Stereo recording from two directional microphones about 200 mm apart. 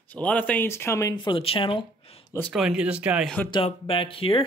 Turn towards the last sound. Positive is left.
turn(degrees=25)  # may be behind; listen again after turning